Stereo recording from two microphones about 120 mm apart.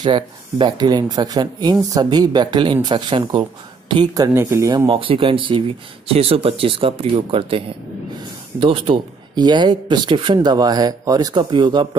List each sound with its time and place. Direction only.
0.0 s speech: 40° right (ahead or behind)
4.3 s speech: 20° right (ahead or behind)
4.8 s speech: 50° right (ahead or behind)